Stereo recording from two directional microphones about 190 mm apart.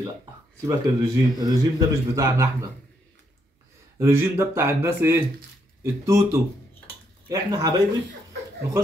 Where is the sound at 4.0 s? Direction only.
10° right (ahead or behind).